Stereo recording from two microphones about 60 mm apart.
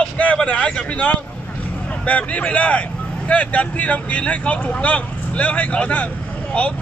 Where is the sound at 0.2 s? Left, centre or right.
Left.